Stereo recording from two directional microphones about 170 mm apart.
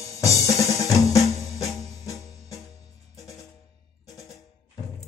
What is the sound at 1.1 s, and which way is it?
Music, 20° left (ahead or behind).